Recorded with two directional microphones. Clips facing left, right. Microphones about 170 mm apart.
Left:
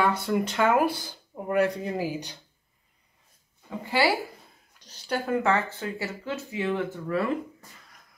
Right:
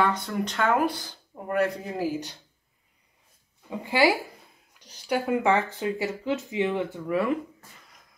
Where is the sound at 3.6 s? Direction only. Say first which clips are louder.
Right 2 dB; 15° right (ahead or behind).